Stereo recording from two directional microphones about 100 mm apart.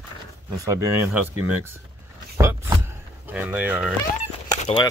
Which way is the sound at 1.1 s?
20° right (ahead or behind).